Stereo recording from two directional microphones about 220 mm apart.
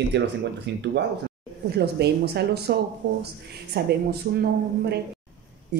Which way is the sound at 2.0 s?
50° right (ahead or behind).